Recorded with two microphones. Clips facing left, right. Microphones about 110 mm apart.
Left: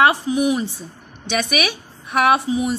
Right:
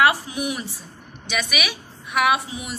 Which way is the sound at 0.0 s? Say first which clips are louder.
Left 4 dB; 25° left (ahead or behind).